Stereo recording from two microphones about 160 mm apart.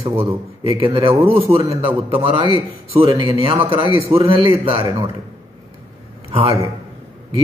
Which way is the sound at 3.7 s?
30° right (ahead or behind).